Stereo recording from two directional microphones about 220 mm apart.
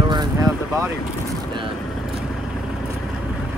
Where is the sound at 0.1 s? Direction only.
15° right (ahead or behind).